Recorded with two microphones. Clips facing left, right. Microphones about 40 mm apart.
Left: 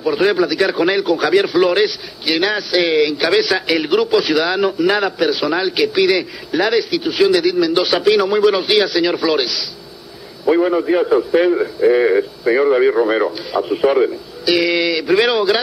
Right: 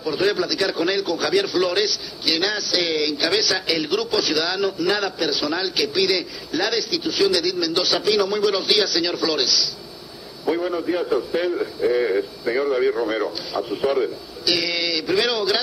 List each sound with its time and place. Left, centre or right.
0.0 s a man's voice: left